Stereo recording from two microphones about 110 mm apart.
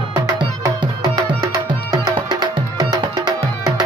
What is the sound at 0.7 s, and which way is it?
Music, 30° right (ahead or behind).